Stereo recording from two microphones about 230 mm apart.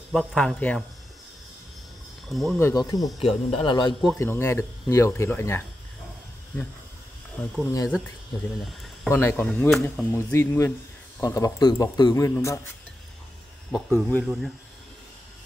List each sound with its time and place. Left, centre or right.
0.1 s speech: centre
2.3 s speech: centre
2.6 s speech: centre
3.0 s speech: centre
3.4 s a man's voice: left
7.6 s speech: centre
9.0 s speech: centre
13.7 s speech: centre